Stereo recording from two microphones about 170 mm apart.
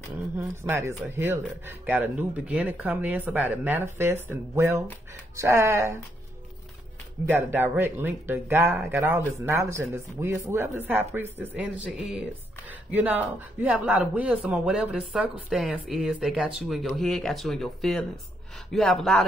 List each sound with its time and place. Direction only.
0.4 s speech: 15° right (ahead or behind)
7.2 s speech: 10° right (ahead or behind)